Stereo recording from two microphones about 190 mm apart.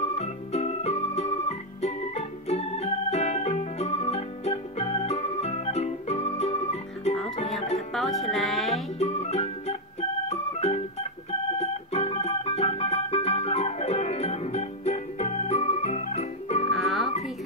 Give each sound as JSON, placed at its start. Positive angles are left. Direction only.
{"t": 0.0, "sound": "organ", "side_deg": 35}
{"t": 7.9, "sound": "music", "side_deg": 0}
{"t": 9.0, "sound": "music", "side_deg": 35}
{"t": 10.2, "sound": "organ", "side_deg": 35}
{"t": 11.5, "sound": "music", "side_deg": 35}
{"t": 16.7, "sound": "music", "side_deg": 0}